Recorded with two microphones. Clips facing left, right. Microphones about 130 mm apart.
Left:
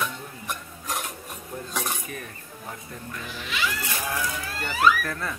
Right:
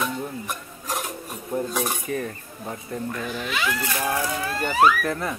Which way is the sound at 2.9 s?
50° right (ahead or behind).